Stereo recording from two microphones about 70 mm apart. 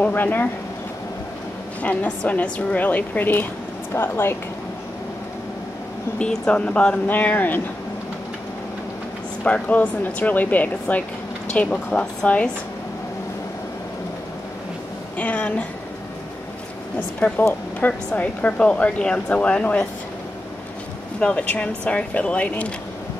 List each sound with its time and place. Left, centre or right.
0.0 s speech: left
1.8 s speech: left
6.1 s speech: centre
9.4 s a woman's voice: left
15.1 s speech: left
17.2 s speech: left
21.2 s speech: centre